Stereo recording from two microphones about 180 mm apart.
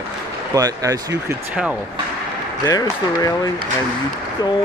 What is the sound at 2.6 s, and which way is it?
Speech, 20° left (ahead or behind).